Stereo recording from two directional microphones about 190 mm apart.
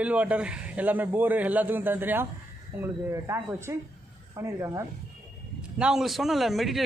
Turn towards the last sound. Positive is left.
turn(degrees=0)  # may be behind; listen again after turning